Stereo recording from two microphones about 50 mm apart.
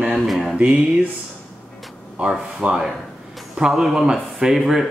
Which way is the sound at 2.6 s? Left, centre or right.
Right.